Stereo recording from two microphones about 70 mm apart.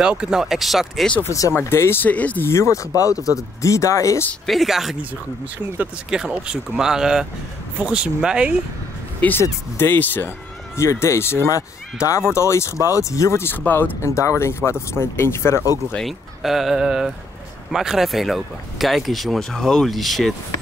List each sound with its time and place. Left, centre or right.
0.2 s speech: centre
1.5 s speech: left
2.4 s speech: left
4.5 s speech: centre
6.0 s speech: centre
9.4 s speech: left
10.8 s speech: left
11.5 s speech: left
14.0 s speech: left
16.0 s speech: centre